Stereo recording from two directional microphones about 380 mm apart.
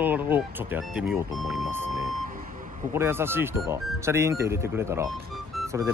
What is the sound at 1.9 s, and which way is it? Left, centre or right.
Vehicle, right.